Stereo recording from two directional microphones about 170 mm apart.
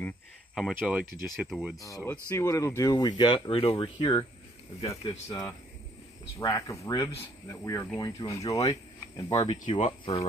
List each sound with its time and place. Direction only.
0.6 s speech: 5° right (ahead or behind)
2.3 s speech: 15° left (ahead or behind)
5.3 s speech: 20° left (ahead or behind)
9.5 s speech: 35° left (ahead or behind)